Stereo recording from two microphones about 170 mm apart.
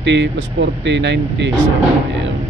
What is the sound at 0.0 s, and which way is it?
Speech, 90° right.